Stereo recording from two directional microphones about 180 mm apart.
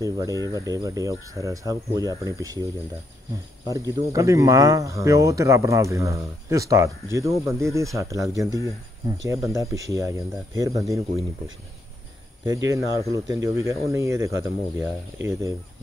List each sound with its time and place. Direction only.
0.0 s speech: 20° right (ahead or behind)
3.6 s speech: 20° right (ahead or behind)
12.4 s speech: 15° right (ahead or behind)